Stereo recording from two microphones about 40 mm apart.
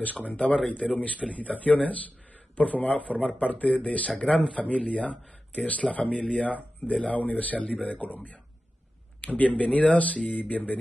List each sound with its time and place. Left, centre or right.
0.0 s speech: left